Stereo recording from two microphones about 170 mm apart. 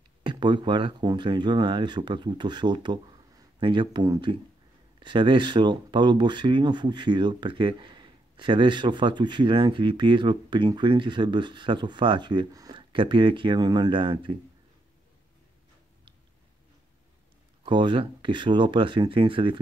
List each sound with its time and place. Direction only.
0.2 s speech: 25° right (ahead or behind)
17.6 s speech: 30° right (ahead or behind)